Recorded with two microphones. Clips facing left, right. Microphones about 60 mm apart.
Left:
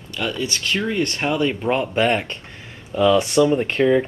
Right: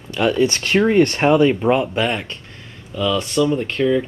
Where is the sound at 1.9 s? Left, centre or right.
Centre.